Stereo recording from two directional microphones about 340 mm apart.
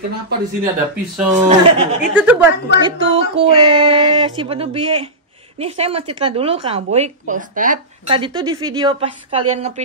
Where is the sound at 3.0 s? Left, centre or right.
Centre.